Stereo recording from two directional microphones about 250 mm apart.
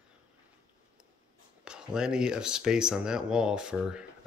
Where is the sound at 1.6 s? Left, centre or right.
Centre.